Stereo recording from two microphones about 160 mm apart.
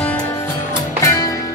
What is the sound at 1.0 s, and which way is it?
Music, 20° left (ahead or behind).